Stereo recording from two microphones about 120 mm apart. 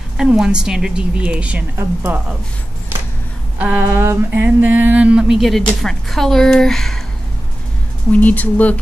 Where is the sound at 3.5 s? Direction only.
10° right (ahead or behind).